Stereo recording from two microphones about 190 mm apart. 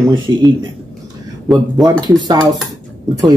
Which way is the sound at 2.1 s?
20° right (ahead or behind).